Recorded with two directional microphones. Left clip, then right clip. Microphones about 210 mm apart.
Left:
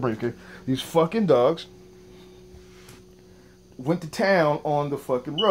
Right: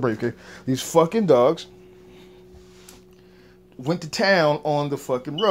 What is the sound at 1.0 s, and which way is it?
Speech, 20° right (ahead or behind).